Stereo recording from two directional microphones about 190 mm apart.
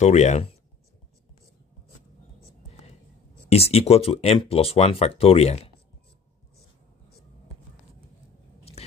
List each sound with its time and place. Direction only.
0.0 s speech: 35° left (ahead or behind)
3.4 s speech: 35° left (ahead or behind)